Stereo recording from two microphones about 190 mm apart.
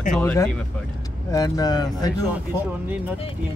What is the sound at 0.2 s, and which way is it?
Speech, 10° left (ahead or behind).